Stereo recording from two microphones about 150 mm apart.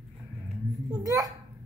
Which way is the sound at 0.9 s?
25° right (ahead or behind).